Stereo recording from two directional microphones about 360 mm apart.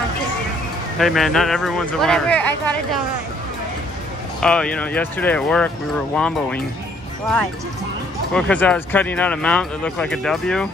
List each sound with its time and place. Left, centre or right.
0.9 s speech: centre
4.4 s speech: centre
8.3 s speech: centre